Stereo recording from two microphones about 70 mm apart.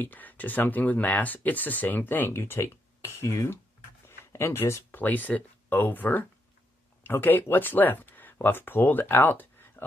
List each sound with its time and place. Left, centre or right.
0.0 s speech: left
4.3 s speech: left
5.0 s speech: left